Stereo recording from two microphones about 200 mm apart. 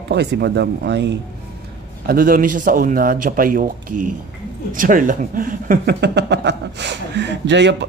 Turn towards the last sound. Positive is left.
turn(degrees=-60)  # may be behind; listen again after turning